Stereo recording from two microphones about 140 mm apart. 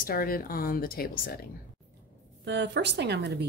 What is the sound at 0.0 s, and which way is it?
A woman's voice, 90° left.